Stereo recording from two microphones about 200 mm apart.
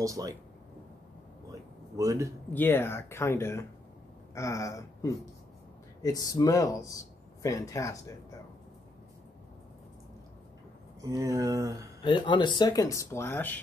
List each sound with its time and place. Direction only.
0.0 s speech: 15° right (ahead or behind)
1.5 s a sound: 15° right (ahead or behind)
2.5 s speech: 10° left (ahead or behind)
11.0 s speech: 15° right (ahead or behind)
12.0 s speech: 25° left (ahead or behind)